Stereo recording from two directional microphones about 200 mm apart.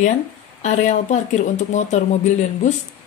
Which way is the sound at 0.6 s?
35° left (ahead or behind).